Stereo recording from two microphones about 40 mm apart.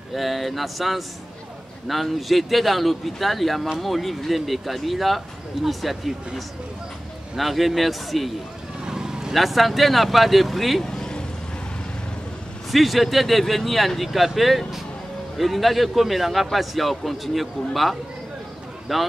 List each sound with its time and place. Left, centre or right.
0.1 s speech: centre
8.8 s vehicle: centre
9.3 s speech: centre
10.8 s vehicle: centre
12.7 s speech: centre